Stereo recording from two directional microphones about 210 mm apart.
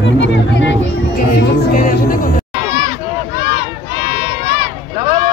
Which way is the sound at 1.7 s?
40° left (ahead or behind).